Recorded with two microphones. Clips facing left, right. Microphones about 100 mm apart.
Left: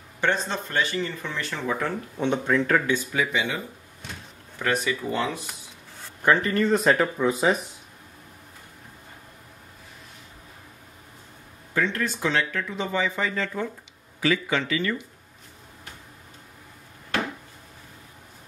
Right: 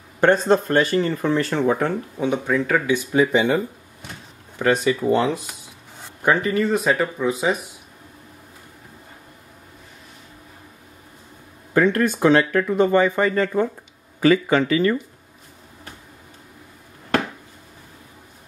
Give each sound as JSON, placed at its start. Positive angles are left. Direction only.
{"t": 0.5, "sound": "speech", "side_deg": -45}
{"t": 2.1, "sound": "speech", "side_deg": -5}
{"t": 3.3, "sound": "speech", "side_deg": -45}
{"t": 4.6, "sound": "speech", "side_deg": -25}
{"t": 6.2, "sound": "speech", "side_deg": -15}
{"t": 11.7, "sound": "speech", "side_deg": -55}